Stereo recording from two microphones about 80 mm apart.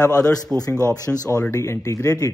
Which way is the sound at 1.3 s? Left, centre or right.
Left.